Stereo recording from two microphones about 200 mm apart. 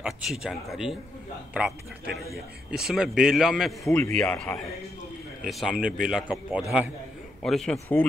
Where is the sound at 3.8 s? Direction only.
10° left (ahead or behind).